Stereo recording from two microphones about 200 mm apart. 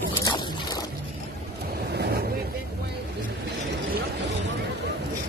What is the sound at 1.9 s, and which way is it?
Vehicle, 55° right (ahead or behind).